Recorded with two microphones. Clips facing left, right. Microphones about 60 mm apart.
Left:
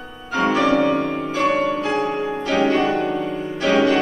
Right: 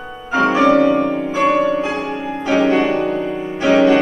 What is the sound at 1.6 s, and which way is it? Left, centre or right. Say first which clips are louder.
Music: right 3 dB; centre.